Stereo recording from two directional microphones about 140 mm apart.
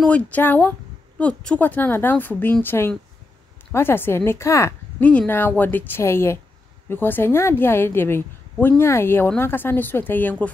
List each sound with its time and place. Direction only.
0.0 s speech: 10° left (ahead or behind)